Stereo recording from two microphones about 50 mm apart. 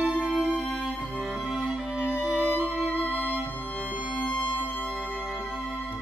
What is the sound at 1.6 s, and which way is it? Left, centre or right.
Music, right.